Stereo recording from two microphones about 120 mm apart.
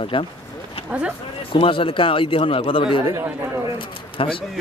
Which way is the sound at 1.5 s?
45° left (ahead or behind).